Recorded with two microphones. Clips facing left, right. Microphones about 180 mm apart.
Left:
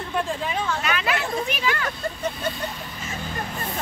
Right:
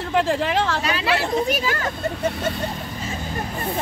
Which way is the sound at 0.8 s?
30° right (ahead or behind).